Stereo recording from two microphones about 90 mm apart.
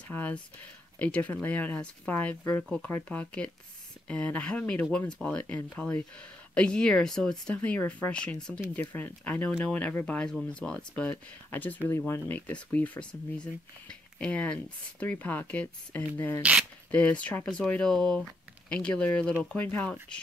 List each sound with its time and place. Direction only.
0.1 s speech: 15° left (ahead or behind)
16.2 s speech: 25° left (ahead or behind)
16.9 s speech: 15° left (ahead or behind)